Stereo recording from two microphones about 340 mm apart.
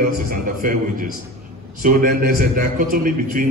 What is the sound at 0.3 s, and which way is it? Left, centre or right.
A man's voice, right.